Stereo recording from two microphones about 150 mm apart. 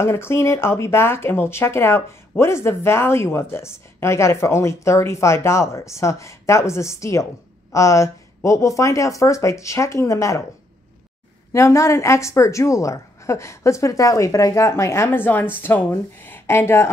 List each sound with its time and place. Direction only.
0.0 s a woman's voice: 15° left (ahead or behind)
11.5 s a woman's voice: 20° left (ahead or behind)